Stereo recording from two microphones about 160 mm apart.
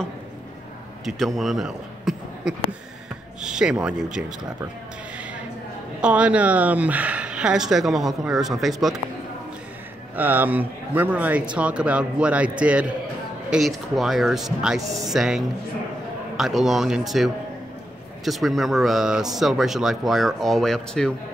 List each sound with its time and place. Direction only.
1.0 s a man's voice: centre (ahead or behind)
5.9 s speech: 5° right (ahead or behind)
10.1 s a man's voice: 10° right (ahead or behind)
14.8 s speech: 20° right (ahead or behind)
15.0 s speech: 5° right (ahead or behind)